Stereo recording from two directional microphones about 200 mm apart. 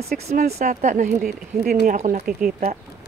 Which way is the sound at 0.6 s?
35° right (ahead or behind).